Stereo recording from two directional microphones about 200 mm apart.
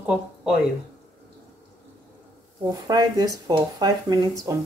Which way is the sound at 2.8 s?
20° right (ahead or behind).